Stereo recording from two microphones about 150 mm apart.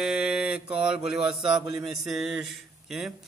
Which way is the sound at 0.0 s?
5° right (ahead or behind).